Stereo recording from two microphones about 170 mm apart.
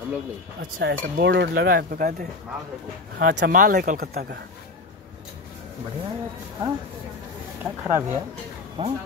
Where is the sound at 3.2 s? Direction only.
90° right.